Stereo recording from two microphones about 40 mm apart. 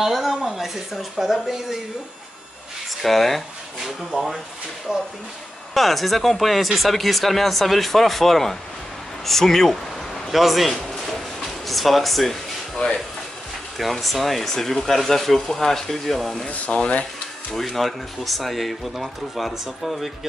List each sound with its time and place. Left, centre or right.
0.0 s speech: centre
3.0 s speech: centre
3.8 s speech: centre
5.8 s speech: centre
10.3 s a sound: centre
12.8 s speech: left
13.7 s speech: centre
16.4 s speech: left
17.6 s speech: centre